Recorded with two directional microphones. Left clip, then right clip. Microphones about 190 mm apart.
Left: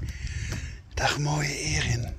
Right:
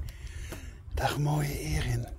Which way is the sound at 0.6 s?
20° right (ahead or behind).